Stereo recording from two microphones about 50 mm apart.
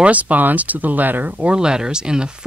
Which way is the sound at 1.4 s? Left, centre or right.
Centre.